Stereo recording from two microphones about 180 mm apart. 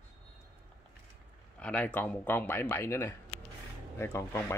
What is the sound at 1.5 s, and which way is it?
Speech, 5° left (ahead or behind).